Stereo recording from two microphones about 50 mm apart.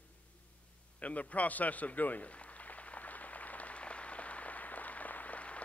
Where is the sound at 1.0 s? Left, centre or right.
Left.